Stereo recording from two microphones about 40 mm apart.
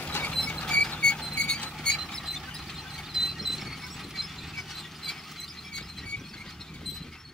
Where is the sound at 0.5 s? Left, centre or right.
Left.